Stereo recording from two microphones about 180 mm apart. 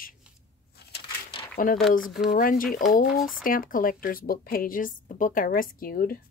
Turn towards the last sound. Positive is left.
turn(degrees=55)  # may be behind; listen again after turning